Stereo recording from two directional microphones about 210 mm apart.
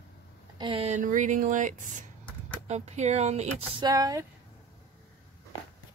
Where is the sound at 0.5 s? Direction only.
25° right (ahead or behind).